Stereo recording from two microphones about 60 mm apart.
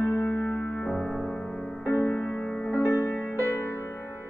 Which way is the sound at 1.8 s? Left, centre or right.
Left.